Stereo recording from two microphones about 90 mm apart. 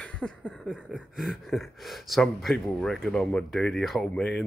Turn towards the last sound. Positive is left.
turn(degrees=10)  # may be behind; listen again after turning